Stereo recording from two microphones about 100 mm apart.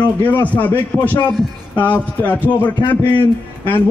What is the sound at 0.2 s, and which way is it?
A man's voice, 15° left (ahead or behind).